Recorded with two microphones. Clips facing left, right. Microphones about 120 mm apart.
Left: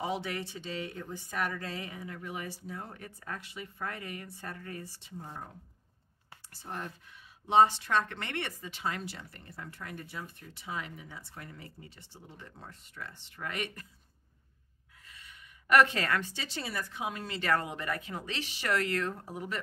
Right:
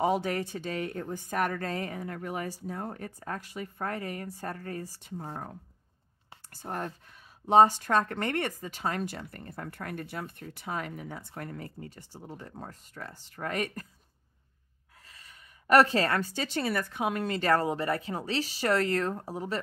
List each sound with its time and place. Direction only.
0.0 s a woman's voice: 45° right (ahead or behind)
6.5 s a woman's voice: 45° right (ahead or behind)
15.0 s a sound: 35° right (ahead or behind)
16.4 s speech: 55° right (ahead or behind)
17.4 s speech: 35° right (ahead or behind)